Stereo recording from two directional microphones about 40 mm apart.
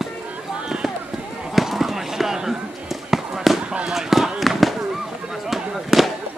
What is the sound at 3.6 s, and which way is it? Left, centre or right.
Fireworks, right.